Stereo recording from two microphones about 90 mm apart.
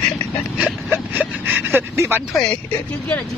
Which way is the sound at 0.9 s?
20° right (ahead or behind).